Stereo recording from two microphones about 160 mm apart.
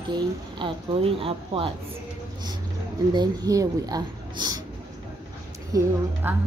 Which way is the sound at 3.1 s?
25° right (ahead or behind).